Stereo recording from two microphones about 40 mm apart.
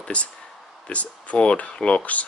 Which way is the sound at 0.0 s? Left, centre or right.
Left.